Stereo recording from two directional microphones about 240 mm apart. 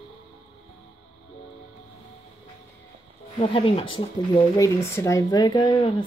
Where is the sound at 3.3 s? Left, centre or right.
Left.